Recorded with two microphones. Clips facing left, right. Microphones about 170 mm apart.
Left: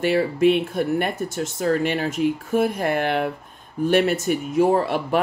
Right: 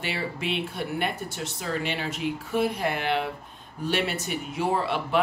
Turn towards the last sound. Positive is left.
turn(degrees=45)  # may be behind; listen again after turning